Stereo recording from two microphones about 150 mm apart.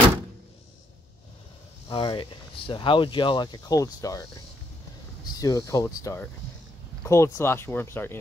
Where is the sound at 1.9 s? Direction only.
35° left (ahead or behind).